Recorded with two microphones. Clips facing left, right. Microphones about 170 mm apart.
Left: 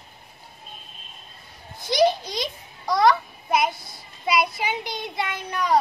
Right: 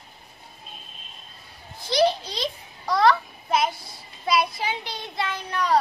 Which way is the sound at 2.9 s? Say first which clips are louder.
Left 1 dB; 15° left (ahead or behind).